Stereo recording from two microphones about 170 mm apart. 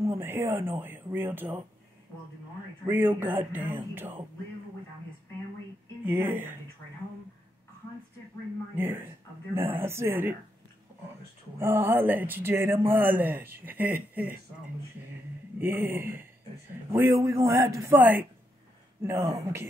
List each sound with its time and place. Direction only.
0.0 s a man's voice: 15° right (ahead or behind)
2.9 s a man's voice: 10° right (ahead or behind)
6.0 s a man's voice: 10° right (ahead or behind)
8.7 s a man's voice: 15° right (ahead or behind)
11.5 s a man's voice: 15° right (ahead or behind)
15.6 s a man's voice: 10° right (ahead or behind)